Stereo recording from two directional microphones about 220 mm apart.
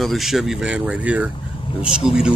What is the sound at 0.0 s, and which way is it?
Speech, centre (ahead or behind).